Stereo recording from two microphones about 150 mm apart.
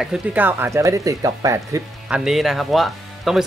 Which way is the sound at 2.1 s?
5° right (ahead or behind).